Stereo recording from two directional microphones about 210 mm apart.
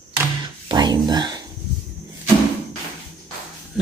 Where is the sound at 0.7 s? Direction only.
20° right (ahead or behind).